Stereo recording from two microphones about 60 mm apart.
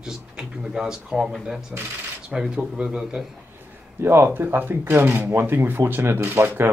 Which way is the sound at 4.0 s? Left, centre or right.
Right.